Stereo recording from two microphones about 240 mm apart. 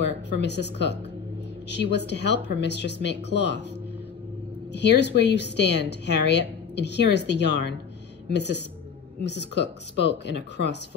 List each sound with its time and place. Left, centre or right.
0.4 s a woman's voice: left
4.7 s a woman's voice: left